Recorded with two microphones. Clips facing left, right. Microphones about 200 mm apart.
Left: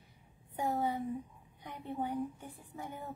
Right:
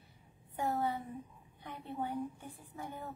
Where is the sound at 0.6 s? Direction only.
15° left (ahead or behind).